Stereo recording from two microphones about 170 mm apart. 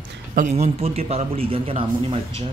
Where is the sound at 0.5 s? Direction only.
35° right (ahead or behind).